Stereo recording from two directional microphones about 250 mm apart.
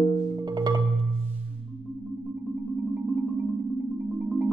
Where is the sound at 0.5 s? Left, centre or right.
Centre.